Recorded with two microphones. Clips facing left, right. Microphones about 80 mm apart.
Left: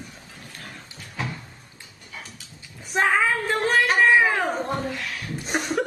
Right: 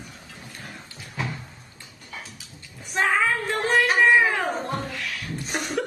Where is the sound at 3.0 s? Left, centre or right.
Centre.